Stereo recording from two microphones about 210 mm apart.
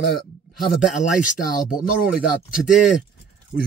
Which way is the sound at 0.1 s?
Centre (ahead or behind).